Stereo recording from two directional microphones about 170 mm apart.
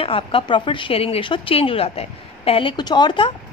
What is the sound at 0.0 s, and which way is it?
Speech, 30° left (ahead or behind).